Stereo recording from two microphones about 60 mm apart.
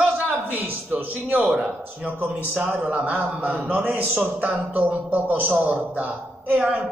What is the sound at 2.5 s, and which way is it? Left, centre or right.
A man's voice, right.